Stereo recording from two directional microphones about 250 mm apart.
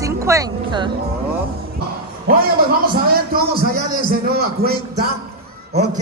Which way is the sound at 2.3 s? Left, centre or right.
Right.